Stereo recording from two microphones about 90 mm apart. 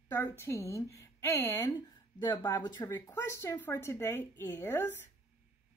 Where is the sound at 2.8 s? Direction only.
40° left (ahead or behind).